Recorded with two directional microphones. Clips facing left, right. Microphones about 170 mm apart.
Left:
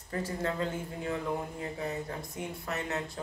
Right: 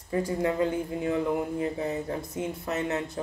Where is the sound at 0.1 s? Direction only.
15° right (ahead or behind).